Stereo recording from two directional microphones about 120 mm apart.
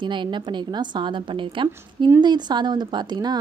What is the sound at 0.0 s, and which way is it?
A woman's voice, 40° right (ahead or behind).